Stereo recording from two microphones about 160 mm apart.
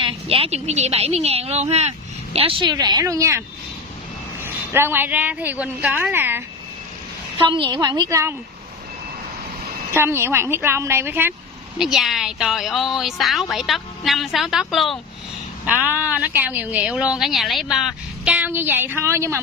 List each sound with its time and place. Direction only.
0.0 s a woman's voice: 35° right (ahead or behind); by 3.4 s 15° right (ahead or behind)
4.7 s a woman's voice: 15° right (ahead or behind)
7.3 s a woman's voice: 30° right (ahead or behind)
9.9 s a woman's voice: 15° right (ahead or behind)
11.8 s a woman's voice: centre (ahead or behind)